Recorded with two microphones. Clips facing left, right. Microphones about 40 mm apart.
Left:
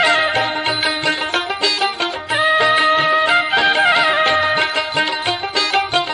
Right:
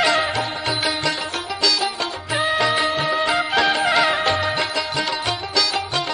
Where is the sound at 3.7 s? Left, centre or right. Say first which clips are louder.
Left 4 dB; left.